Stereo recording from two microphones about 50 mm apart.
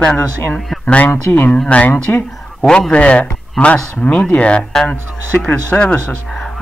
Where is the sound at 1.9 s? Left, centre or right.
Left.